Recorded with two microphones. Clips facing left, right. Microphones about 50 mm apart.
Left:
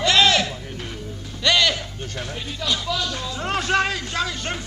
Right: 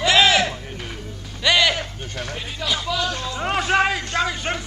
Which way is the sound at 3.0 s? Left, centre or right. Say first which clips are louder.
Right 3 dB; centre.